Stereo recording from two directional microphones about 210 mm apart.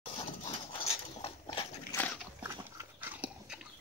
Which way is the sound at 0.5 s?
30° left (ahead or behind).